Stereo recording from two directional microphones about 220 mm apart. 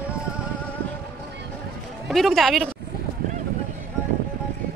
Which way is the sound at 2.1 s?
Centre (ahead or behind).